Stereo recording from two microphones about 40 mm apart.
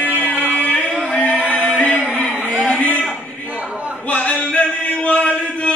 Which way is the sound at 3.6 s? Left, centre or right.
Right.